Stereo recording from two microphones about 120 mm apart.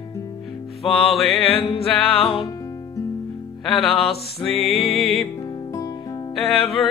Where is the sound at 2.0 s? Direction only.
55° left (ahead or behind).